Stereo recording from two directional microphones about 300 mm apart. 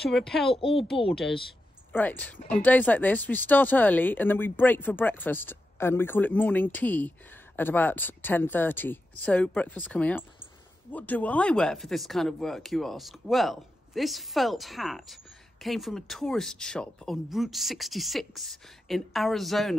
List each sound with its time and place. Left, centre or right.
0.1 s speech: centre
0.6 s speech: centre
1.1 s speech: centre